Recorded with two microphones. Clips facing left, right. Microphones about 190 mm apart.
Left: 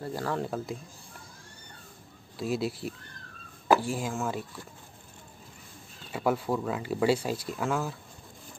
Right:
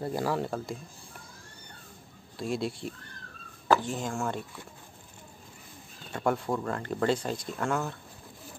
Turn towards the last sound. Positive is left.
turn(degrees=0)  # may be behind; listen again after turning